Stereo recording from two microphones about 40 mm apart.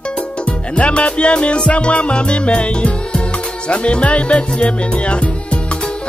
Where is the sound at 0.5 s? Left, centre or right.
Left.